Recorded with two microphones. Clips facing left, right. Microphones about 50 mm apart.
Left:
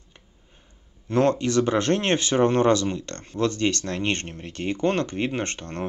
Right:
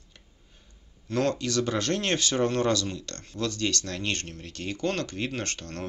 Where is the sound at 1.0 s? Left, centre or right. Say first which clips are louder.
Left 6 dB; left.